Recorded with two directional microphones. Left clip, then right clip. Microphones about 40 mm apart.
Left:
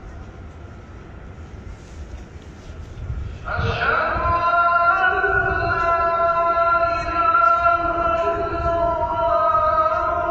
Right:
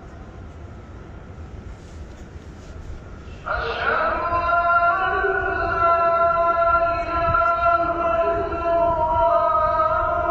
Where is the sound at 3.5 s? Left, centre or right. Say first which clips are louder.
Right 1 dB; right.